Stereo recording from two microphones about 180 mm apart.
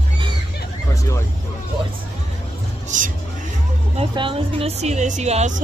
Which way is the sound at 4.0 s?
30° right (ahead or behind).